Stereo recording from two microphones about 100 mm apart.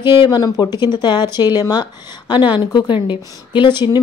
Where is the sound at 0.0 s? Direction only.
45° left (ahead or behind).